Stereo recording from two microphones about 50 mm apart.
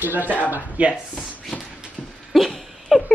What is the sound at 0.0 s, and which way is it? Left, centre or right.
Speech, right.